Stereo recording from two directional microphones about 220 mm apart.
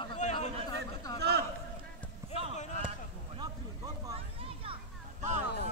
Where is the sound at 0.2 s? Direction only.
30° left (ahead or behind).